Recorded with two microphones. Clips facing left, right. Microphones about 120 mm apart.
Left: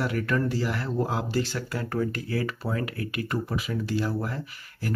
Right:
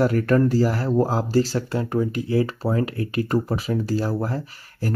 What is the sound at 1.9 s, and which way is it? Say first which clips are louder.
Speech: right 6 dB; 20° right (ahead or behind).